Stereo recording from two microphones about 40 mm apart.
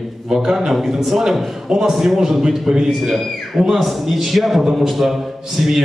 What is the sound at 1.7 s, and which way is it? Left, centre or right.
A man's voice, centre.